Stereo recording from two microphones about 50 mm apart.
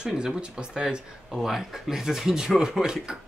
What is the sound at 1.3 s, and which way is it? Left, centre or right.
Speech, centre.